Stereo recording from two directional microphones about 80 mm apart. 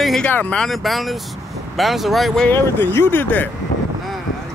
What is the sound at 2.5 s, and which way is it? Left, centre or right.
Speech, left.